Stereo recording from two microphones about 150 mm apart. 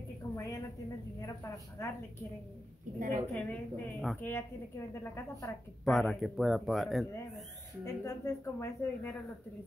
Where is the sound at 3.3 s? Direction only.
10° left (ahead or behind).